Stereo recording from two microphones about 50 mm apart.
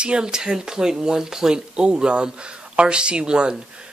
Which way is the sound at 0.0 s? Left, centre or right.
Centre.